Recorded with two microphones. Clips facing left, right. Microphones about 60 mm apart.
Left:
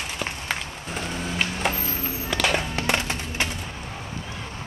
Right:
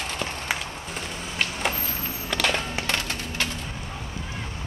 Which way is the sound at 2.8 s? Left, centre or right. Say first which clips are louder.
Left 3 dB; left.